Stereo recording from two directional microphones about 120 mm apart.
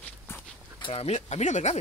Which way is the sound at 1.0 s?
75° left (ahead or behind).